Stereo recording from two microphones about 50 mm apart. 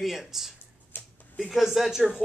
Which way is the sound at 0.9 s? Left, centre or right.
Left.